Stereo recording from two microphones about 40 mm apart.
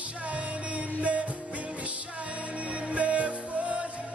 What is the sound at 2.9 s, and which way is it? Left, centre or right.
Music, right.